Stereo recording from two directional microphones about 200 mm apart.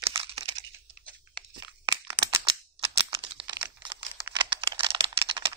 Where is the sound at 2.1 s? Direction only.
25° right (ahead or behind).